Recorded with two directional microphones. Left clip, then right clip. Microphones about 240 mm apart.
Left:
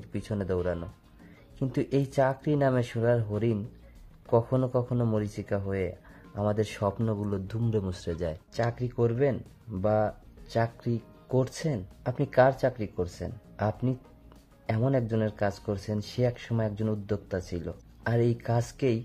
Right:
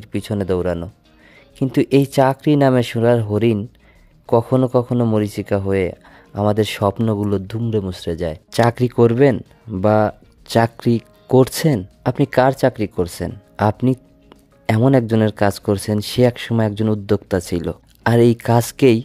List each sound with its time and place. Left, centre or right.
0.0 s speech: right